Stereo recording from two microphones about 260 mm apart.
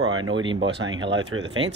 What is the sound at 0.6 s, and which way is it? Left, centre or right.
Speech, right.